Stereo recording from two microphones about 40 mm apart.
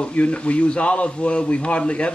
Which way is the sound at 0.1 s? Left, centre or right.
Left.